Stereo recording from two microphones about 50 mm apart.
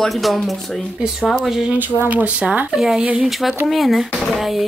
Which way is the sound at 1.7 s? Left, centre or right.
Right.